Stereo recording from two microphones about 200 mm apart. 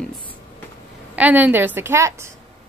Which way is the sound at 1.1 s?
10° right (ahead or behind).